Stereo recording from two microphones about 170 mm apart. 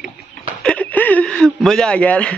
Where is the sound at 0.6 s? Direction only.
10° left (ahead or behind).